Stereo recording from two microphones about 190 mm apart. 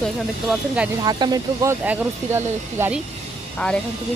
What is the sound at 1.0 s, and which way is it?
Speech, 20° right (ahead or behind).